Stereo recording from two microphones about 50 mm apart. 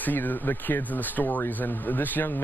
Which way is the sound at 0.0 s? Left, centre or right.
Left.